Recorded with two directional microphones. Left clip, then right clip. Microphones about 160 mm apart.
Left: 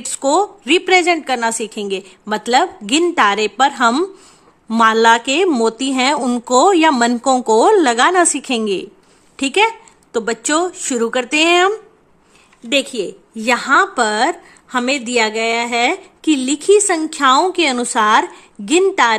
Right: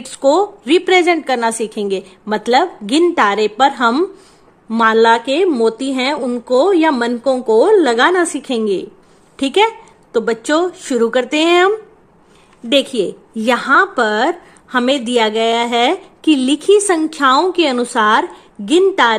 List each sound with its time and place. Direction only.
0.0 s a woman's voice: 15° left (ahead or behind)
12.6 s a woman's voice: centre (ahead or behind); by 19.1 s 15° left (ahead or behind)